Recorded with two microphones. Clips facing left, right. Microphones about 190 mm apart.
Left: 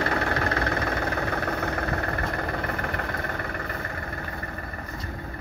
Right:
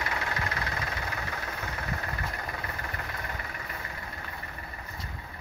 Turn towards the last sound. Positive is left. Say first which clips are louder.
# left 7 dB
turn(degrees=55)  # may be behind; listen again after turning